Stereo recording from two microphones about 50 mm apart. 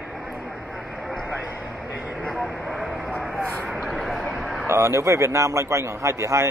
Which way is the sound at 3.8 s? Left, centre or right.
Centre.